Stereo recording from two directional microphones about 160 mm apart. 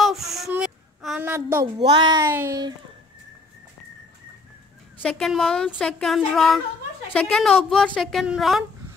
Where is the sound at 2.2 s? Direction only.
15° right (ahead or behind).